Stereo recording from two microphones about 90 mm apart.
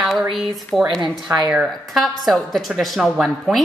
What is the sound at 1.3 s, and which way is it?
Speech, 30° right (ahead or behind).